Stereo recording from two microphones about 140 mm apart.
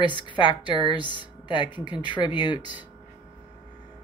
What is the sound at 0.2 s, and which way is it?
Speech, 35° left (ahead or behind).